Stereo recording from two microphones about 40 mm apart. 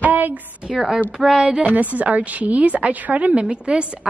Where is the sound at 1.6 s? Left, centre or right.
Right.